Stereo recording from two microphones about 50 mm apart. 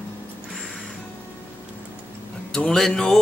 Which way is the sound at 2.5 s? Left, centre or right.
Centre.